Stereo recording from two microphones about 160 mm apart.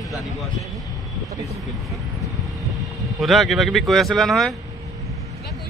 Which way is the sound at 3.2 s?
Centre (ahead or behind).